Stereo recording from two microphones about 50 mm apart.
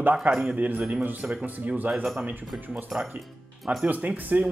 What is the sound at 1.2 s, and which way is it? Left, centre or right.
Speech, centre.